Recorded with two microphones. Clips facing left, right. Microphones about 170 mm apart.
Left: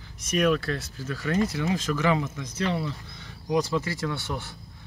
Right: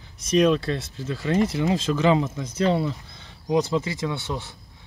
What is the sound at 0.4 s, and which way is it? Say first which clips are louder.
Speech: right 4 dB; 25° right (ahead or behind).